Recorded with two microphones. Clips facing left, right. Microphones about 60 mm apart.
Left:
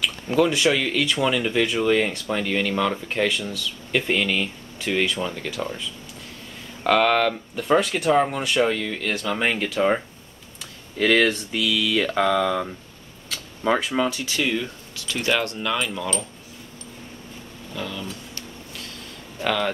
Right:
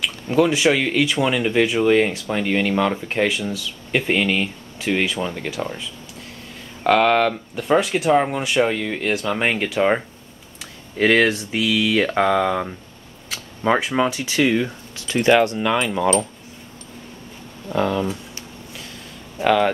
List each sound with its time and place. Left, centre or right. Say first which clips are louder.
0.0 s speech: right 2 dB; centre
17.7 s speech: right 12 dB; right
19.4 s speech: right 7 dB; centre